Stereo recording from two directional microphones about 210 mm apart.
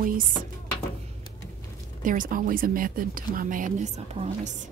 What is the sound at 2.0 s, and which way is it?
Speech, 40° right (ahead or behind).